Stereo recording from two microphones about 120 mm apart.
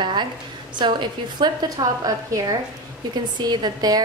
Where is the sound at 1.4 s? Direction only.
35° right (ahead or behind).